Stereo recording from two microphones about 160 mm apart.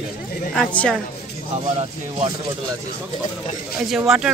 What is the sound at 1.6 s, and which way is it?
Speech, 45° right (ahead or behind).